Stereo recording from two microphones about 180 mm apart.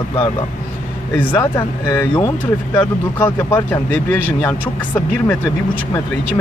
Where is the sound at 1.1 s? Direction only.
10° left (ahead or behind).